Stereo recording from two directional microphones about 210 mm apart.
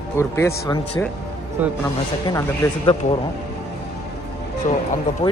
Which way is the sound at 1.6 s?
10° right (ahead or behind).